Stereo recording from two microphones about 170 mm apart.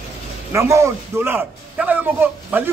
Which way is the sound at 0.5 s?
15° right (ahead or behind).